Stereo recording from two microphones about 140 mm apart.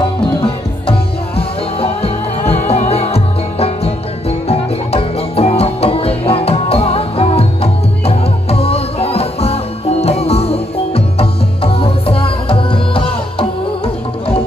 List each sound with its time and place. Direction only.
0.4 s music: 40° left (ahead or behind)